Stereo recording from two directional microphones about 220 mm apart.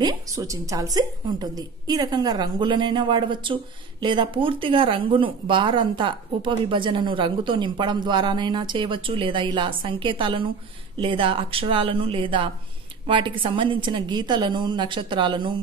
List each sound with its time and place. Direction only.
0.0 s speech: 15° right (ahead or behind)